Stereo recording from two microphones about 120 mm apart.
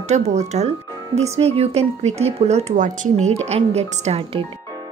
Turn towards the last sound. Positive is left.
turn(degrees=-55)  # may be behind; listen again after turning